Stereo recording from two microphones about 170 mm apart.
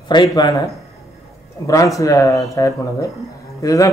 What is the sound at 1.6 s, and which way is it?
A man's voice, 20° left (ahead or behind).